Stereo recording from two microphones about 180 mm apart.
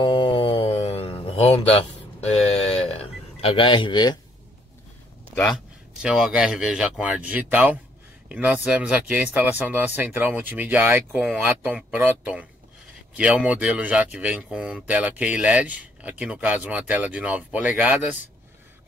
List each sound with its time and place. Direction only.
0.0 s a sound: 30° left (ahead or behind)
0.8 s music: 35° left (ahead or behind)
5.3 s a man's voice: centre (ahead or behind)